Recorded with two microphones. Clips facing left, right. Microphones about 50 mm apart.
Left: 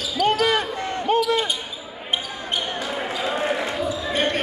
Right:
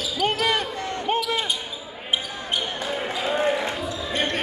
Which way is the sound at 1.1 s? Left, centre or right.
Right.